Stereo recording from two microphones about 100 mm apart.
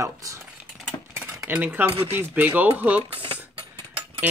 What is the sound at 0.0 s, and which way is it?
Speech, 30° right (ahead or behind).